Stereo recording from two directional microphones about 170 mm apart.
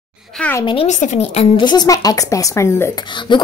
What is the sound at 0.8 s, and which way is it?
Speech, 40° left (ahead or behind).